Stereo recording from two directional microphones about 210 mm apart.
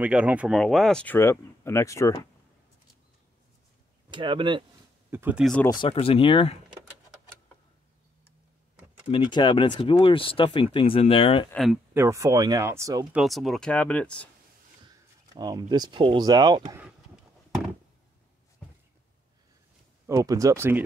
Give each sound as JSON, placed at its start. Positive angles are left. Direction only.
{"t": 0.0, "sound": "speech", "side_deg": -5}
{"t": 4.1, "sound": "speech", "side_deg": -25}
{"t": 5.1, "sound": "speech", "side_deg": -10}
{"t": 5.4, "sound": "speech", "side_deg": 5}
{"t": 5.7, "sound": "speech", "side_deg": 25}
{"t": 9.1, "sound": "speech", "side_deg": 20}
{"t": 11.5, "sound": "speech", "side_deg": 0}
{"t": 11.9, "sound": "speech", "side_deg": -15}
{"t": 13.2, "sound": "speech", "side_deg": 0}
{"t": 15.3, "sound": "speech", "side_deg": -20}
{"t": 20.1, "sound": "speech", "side_deg": -15}